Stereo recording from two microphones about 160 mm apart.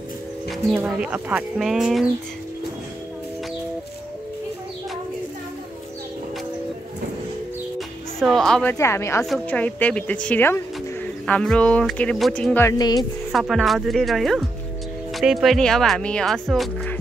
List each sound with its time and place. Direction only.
0.5 s speech: centre (ahead or behind)
8.2 s speech: 5° left (ahead or behind)
8.7 s a woman's voice: 15° left (ahead or behind)
9.2 s a woman's voice: 5° left (ahead or behind)
12.6 s speech: 25° left (ahead or behind)
13.3 s speech: centre (ahead or behind)